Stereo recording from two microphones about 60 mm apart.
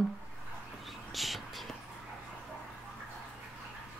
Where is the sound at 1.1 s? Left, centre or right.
Centre.